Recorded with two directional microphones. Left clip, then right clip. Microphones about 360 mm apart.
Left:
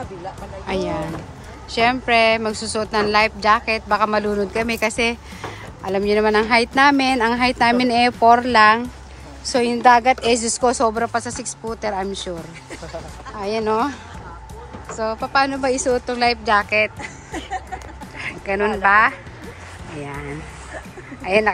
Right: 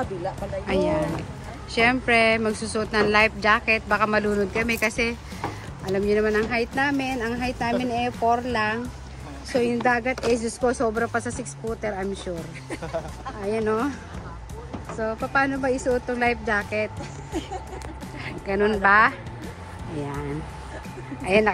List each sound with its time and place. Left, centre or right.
0.7 s speech: centre
7.4 s speech: left
8.5 s speech: centre
13.4 s speech: centre
15.0 s speech: centre
18.2 s speech: centre